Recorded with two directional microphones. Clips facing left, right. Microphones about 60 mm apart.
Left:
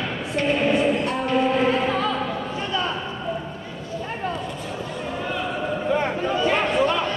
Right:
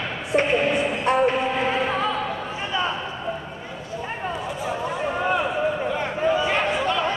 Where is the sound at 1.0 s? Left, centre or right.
Right.